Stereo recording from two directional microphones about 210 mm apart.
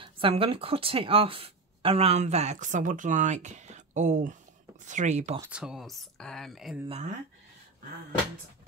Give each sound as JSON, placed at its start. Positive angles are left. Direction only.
{"t": 0.0, "sound": "speech", "side_deg": -25}
{"t": 5.4, "sound": "speech", "side_deg": -5}
{"t": 6.9, "sound": "speech", "side_deg": -30}